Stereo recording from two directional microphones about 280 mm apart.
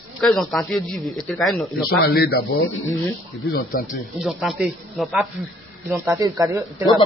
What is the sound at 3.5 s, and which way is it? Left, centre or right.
Speech, left.